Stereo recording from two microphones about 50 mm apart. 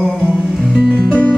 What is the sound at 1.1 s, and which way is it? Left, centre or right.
Music, left.